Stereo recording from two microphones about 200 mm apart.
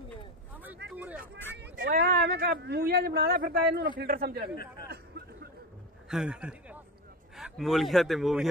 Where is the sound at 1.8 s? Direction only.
45° right (ahead or behind).